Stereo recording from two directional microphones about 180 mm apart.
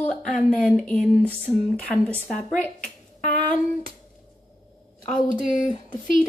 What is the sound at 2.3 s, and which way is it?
Speech, 5° left (ahead or behind).